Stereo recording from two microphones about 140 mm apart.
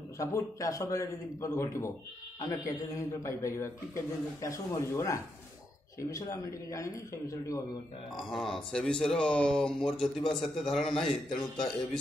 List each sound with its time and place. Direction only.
0.2 s a man's voice: 25° left (ahead or behind)
8.3 s a man's voice: centre (ahead or behind)